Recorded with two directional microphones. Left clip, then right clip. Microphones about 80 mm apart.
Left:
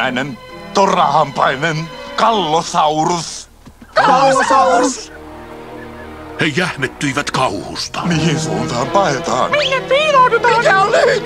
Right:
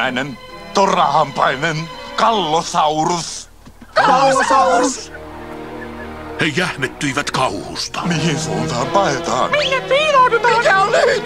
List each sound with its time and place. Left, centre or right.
0.0 s speech: left
6.3 s speech: left